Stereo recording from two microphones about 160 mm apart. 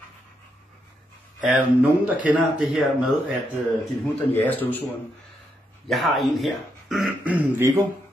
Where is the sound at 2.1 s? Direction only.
10° right (ahead or behind).